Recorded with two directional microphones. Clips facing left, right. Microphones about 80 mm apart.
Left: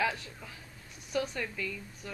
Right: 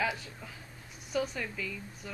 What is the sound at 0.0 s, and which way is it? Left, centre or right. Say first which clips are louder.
A man's voice: left 1 dB; centre.